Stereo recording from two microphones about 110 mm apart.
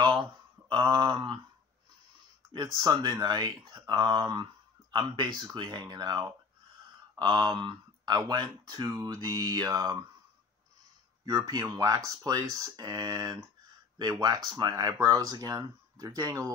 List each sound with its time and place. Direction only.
0.0 s speech: 45° right (ahead or behind)
2.5 s speech: 45° right (ahead or behind)
11.2 s speech: 35° right (ahead or behind)